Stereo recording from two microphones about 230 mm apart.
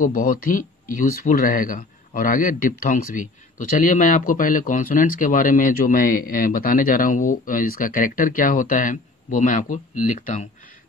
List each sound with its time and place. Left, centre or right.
0.0 s a man's voice: left